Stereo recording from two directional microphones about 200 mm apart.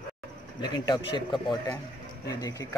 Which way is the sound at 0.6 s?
20° left (ahead or behind).